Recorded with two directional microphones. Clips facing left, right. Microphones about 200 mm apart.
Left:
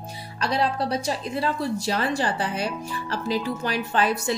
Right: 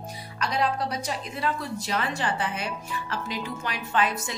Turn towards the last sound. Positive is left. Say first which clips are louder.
# left 3 dB
turn(degrees=35)  # may be behind; listen again after turning